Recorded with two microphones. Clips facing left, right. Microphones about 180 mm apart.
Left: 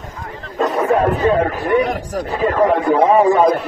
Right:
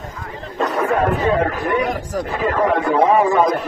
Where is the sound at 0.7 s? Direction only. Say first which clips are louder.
Left 2 dB; 30° left (ahead or behind).